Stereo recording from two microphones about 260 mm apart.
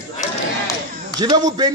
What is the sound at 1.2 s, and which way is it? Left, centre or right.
Speech, centre.